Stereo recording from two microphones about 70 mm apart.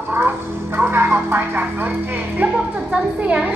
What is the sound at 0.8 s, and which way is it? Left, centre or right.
Music, right.